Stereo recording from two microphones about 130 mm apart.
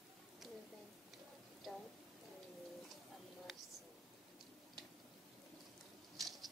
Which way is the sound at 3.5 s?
Centre (ahead or behind).